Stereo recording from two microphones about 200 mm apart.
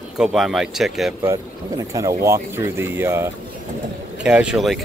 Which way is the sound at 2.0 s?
15° right (ahead or behind).